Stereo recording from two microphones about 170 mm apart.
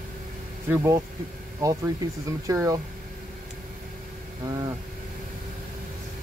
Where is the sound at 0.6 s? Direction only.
15° right (ahead or behind).